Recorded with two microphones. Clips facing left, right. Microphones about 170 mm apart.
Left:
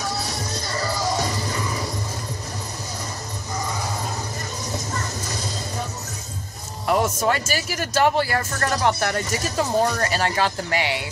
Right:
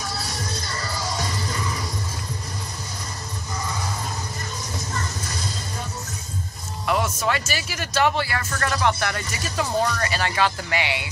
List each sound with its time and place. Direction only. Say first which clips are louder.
6.9 s speech: left 3 dB; 40° left (ahead or behind)